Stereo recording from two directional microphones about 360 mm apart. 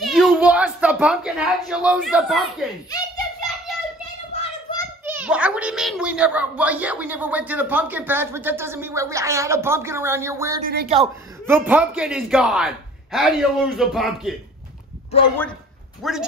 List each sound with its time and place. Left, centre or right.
0.0 s a woman's voice: centre
4.3 s child singing: centre
5.0 s a woman's voice: centre